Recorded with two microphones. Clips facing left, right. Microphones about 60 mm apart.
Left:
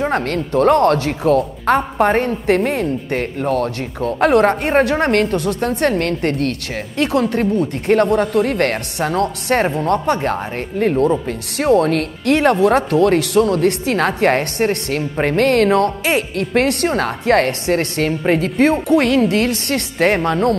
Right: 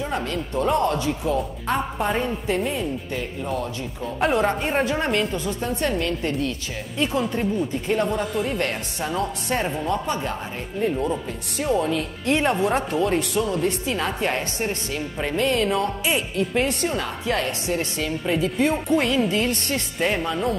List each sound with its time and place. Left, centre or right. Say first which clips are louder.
0.0 s a woman's voice: left 8 dB; left